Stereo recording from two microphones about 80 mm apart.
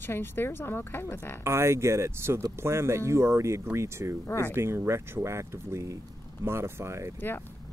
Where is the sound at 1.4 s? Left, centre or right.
Right.